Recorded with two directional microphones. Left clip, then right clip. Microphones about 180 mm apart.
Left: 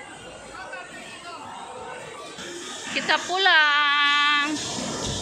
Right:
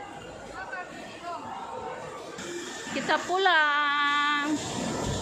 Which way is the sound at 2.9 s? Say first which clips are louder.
Left 3 dB; 20° right (ahead or behind).